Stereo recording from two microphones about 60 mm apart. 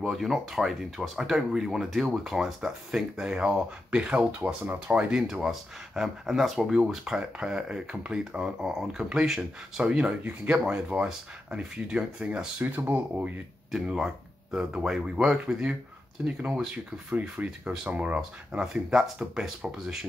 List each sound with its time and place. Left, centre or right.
0.1 s speech: centre; by 5.0 s right
5.1 s speech: centre
13.7 s speech: centre